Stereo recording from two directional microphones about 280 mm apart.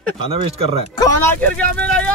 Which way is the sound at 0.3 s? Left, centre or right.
Right.